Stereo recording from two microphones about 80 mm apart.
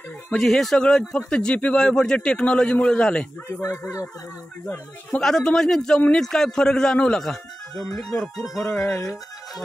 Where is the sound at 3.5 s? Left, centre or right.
Left.